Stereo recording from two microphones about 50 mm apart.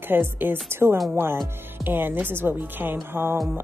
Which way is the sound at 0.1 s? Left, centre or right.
Right.